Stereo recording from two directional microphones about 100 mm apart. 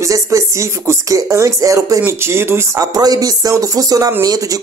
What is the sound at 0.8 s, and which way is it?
Speech, 30° right (ahead or behind).